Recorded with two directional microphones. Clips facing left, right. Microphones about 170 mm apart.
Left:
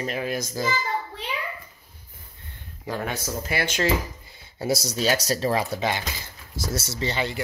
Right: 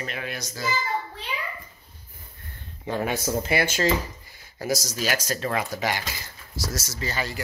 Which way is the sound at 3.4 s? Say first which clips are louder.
Even; 10° right (ahead or behind).